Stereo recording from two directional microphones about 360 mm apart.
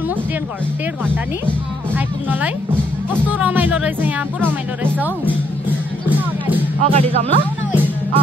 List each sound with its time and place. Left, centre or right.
3.3 s speech: centre
6.8 s speech: centre
7.7 s music: centre